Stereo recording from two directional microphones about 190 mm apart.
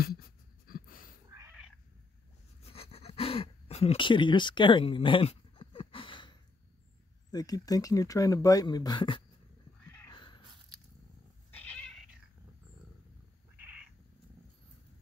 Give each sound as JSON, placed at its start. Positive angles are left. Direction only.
{"t": 0.7, "sound": "a sound", "side_deg": 50}
{"t": 1.3, "sound": "cat", "side_deg": -15}
{"t": 2.6, "sound": "pant", "side_deg": 30}
{"t": 7.2, "sound": "speech", "side_deg": 20}
{"t": 10.0, "sound": "biting", "side_deg": 25}
{"t": 11.5, "sound": "cat", "side_deg": 5}